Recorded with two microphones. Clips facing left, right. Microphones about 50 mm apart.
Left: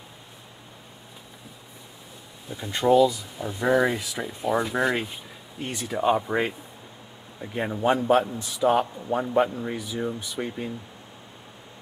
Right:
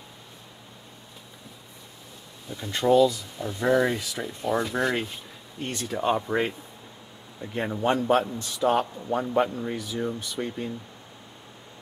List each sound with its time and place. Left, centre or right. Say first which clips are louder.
2.4 s a man's voice: left 1 dB; centre